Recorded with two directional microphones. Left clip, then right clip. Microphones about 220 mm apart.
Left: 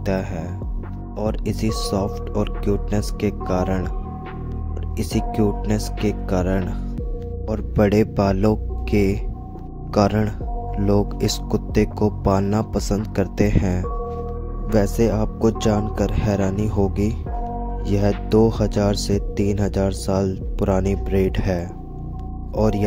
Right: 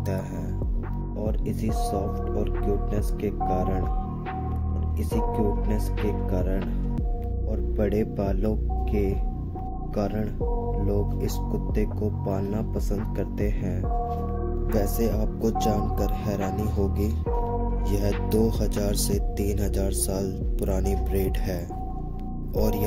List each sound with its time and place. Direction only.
0.0 s speech: 40° left (ahead or behind)
4.9 s speech: 45° left (ahead or behind)